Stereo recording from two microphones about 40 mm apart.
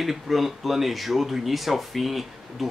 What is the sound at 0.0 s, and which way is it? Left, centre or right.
Speech, centre.